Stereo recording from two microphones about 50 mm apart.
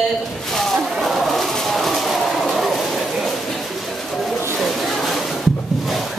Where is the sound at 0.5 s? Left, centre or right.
Centre.